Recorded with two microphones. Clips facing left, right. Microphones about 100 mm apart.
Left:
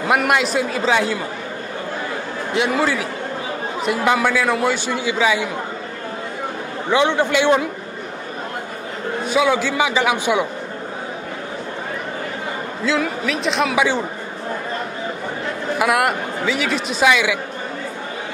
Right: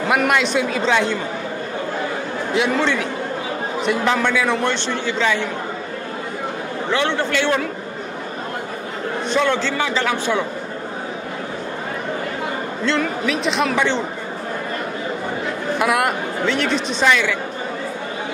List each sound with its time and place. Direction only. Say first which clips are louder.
0.1 s speech: left 1 dB; 5° left (ahead or behind)
2.5 s a man's voice: even; centre (ahead or behind)
6.9 s a man's voice: left 4 dB; 15° left (ahead or behind)
9.3 s a man's voice: left 2 dB; 10° left (ahead or behind)
12.8 s speech: even; 5° left (ahead or behind)
15.8 s speech: left 1 dB; centre (ahead or behind)